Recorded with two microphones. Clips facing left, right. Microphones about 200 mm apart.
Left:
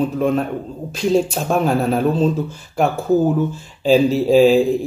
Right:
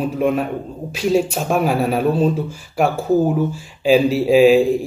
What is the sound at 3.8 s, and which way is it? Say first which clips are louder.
Speech: even; 10° right (ahead or behind).